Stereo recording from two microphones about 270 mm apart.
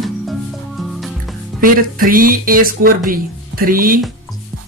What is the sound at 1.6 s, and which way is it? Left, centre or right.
Speech, right.